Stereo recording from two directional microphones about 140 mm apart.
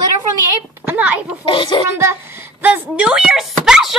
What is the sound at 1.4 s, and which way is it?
Speech, 35° left (ahead or behind).